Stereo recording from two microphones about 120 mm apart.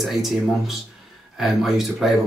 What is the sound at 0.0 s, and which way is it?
Speech, centre (ahead or behind).